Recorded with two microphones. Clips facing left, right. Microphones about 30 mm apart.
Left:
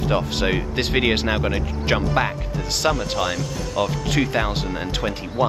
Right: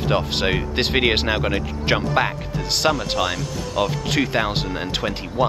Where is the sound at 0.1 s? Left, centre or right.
Centre.